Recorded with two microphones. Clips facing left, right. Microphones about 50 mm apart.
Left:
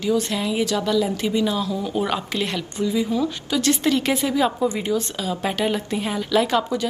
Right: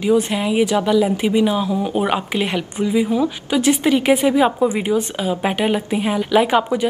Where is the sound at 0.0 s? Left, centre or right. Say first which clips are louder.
Right 5 dB; right.